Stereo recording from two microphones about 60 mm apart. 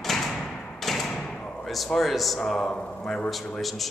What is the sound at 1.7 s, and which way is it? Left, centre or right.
Speech, centre.